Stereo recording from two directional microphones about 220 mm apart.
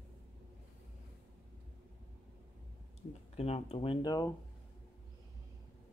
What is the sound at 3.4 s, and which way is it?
Speech, 30° left (ahead or behind).